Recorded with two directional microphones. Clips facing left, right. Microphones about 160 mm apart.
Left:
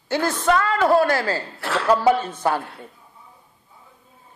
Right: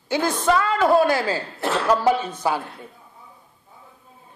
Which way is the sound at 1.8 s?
5° left (ahead or behind).